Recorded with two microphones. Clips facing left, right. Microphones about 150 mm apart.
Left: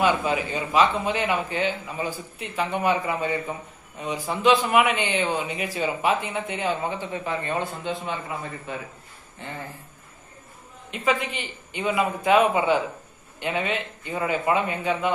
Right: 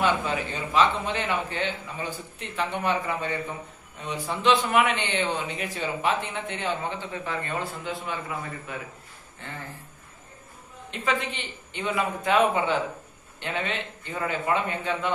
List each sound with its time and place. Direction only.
0.0 s a man's voice: 10° left (ahead or behind); by 8.8 s 30° left (ahead or behind)
10.9 s a man's voice: 10° left (ahead or behind)